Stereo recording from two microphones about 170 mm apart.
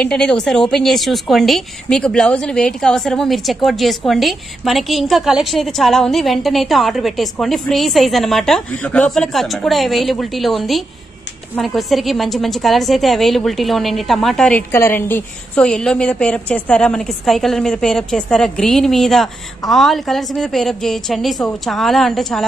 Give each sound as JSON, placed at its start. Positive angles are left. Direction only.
{"t": 0.0, "sound": "a woman's voice", "side_deg": 5}